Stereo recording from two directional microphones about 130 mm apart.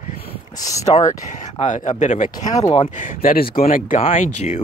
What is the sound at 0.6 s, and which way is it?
Speech, 25° left (ahead or behind).